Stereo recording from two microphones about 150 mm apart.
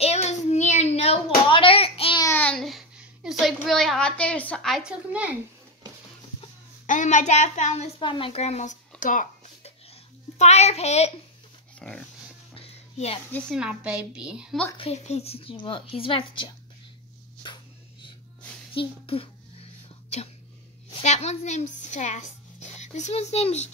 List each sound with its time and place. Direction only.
0.0 s hands: 45° left (ahead or behind)
2.3 s a sound: 5° left (ahead or behind); by 5.4 s 10° right (ahead or behind)
6.9 s a child's voice: 55° left (ahead or behind)
8.0 s a child's voice: 35° left (ahead or behind)
9.0 s speech: 60° left (ahead or behind)
10.3 s a child's voice: 50° left (ahead or behind)
11.8 s a woman's voice: 5° left (ahead or behind)
12.5 s music: 45° left (ahead or behind)
13.6 s a woman's voice: 5° right (ahead or behind)
14.8 s a woman's voice: 45° left (ahead or behind)
18.7 s whispering: 40° left (ahead or behind)
20.9 s speech: 50° left (ahead or behind)